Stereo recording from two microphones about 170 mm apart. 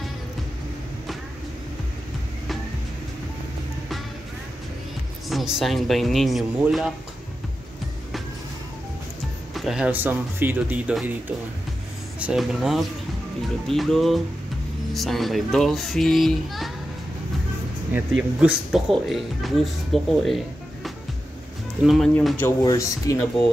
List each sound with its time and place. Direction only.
5.3 s a child's voice: centre (ahead or behind)
9.5 s a child's voice: centre (ahead or behind)
17.9 s a child's voice: 5° right (ahead or behind)
22.4 s speech: 20° left (ahead or behind)